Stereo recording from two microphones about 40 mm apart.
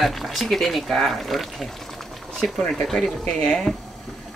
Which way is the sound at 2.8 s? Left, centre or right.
Centre.